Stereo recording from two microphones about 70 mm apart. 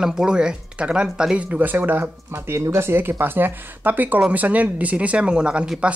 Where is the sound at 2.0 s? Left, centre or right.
Right; by 5.7 s centre.